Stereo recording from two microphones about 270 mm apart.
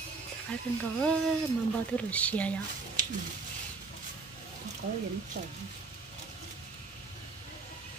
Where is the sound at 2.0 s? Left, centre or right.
Centre.